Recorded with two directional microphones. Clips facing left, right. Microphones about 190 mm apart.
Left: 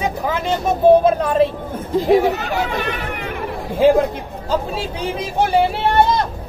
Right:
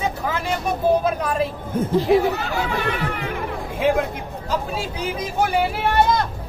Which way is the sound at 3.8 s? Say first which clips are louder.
Left 7 dB; 30° left (ahead or behind).